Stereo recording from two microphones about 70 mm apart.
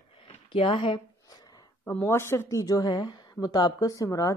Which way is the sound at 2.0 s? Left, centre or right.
Left.